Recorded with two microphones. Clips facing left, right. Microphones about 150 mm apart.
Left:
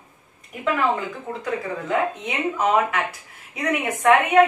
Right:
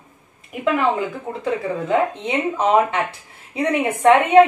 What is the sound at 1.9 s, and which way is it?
A woman's voice, 30° right (ahead or behind).